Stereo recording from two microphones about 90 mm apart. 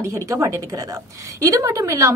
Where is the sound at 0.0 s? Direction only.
30° right (ahead or behind).